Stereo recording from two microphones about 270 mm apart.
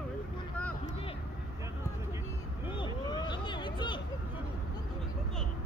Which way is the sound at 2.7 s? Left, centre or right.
Centre.